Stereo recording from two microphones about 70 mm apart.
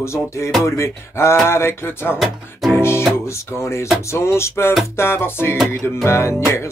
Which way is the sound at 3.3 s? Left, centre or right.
Left.